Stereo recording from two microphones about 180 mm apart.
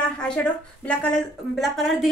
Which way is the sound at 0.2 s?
5° left (ahead or behind).